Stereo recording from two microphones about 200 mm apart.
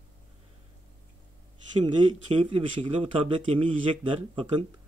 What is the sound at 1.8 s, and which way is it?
Speech, 25° right (ahead or behind).